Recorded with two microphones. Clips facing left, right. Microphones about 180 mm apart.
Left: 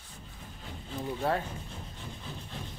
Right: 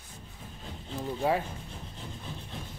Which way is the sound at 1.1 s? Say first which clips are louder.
Right 3 dB; 10° right (ahead or behind).